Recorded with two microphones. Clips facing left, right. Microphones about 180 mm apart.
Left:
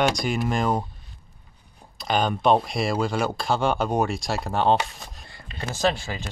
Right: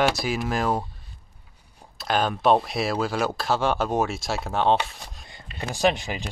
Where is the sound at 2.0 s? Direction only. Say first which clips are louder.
Even; centre (ahead or behind).